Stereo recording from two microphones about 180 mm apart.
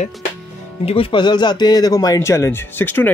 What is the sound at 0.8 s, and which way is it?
Speech, 30° left (ahead or behind).